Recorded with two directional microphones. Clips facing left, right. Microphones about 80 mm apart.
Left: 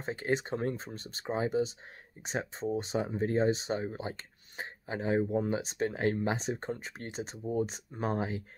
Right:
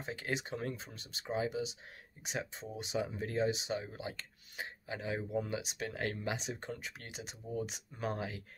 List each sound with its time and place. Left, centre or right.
0.0 s speech: left